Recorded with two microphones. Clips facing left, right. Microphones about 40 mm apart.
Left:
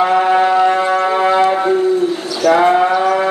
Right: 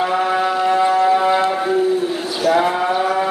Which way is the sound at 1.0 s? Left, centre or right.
Centre.